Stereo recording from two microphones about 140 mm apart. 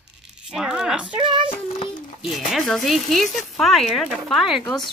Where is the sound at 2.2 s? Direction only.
Centre (ahead or behind).